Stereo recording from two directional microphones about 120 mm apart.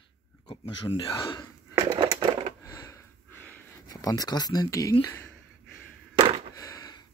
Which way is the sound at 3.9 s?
30° left (ahead or behind).